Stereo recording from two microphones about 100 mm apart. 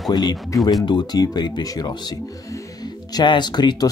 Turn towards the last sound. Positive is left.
turn(degrees=45)  # may be behind; listen again after turning